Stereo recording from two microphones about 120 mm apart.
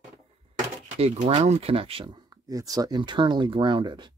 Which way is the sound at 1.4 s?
50° right (ahead or behind).